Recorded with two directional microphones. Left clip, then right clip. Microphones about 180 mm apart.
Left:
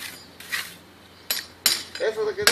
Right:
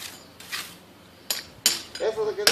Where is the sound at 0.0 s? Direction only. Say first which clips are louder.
Left 3 dB; 50° right (ahead or behind).